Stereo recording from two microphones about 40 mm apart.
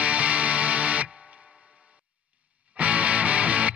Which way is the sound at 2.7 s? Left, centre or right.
Right.